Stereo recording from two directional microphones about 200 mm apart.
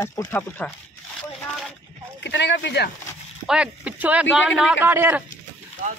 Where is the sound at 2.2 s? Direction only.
60° left (ahead or behind).